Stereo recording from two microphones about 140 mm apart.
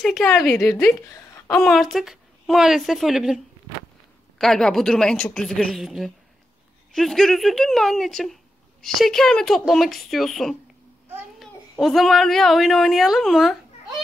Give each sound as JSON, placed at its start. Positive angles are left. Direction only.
{"t": 0.0, "sound": "a woman's voice", "side_deg": 0}
{"t": 0.6, "sound": "a woman's voice", "side_deg": 15}
{"t": 1.6, "sound": "a woman's voice", "side_deg": 0}
{"t": 4.4, "sound": "a woman's voice", "side_deg": 5}
{"t": 11.7, "sound": "a woman's voice", "side_deg": 0}